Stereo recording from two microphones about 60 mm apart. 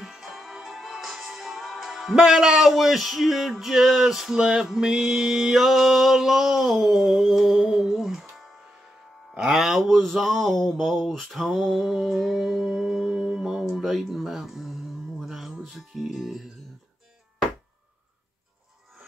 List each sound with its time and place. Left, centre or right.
0.0 s music: centre
9.3 s music: centre
9.6 s speech: centre
9.8 s a sound: centre